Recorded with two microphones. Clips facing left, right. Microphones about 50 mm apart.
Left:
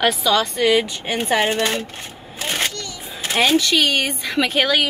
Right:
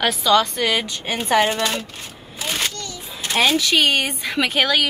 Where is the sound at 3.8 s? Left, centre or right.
Centre.